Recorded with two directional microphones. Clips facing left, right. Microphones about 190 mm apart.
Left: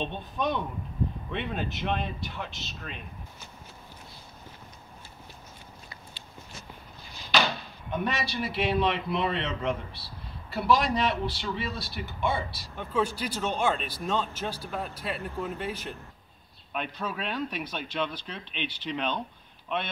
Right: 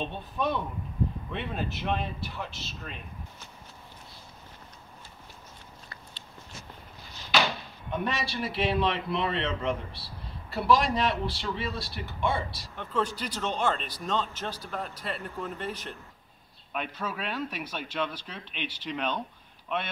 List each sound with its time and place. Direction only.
0.0 s a man's voice: 5° right (ahead or behind)
7.9 s a man's voice: centre (ahead or behind)
16.7 s speech: 5° right (ahead or behind)